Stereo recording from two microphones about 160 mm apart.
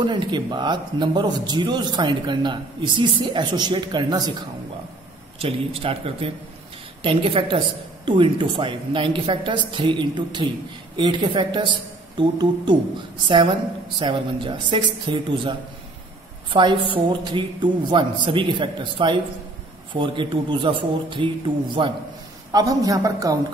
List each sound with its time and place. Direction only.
0.0 s speech: 30° right (ahead or behind)
5.4 s a woman's voice: 35° right (ahead or behind)
13.9 s a woman's voice: 30° right (ahead or behind)
22.5 s speech: 20° right (ahead or behind)